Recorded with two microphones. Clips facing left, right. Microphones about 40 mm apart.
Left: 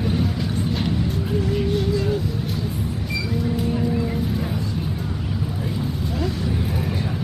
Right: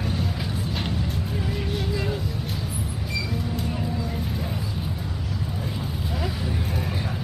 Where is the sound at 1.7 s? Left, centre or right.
Centre.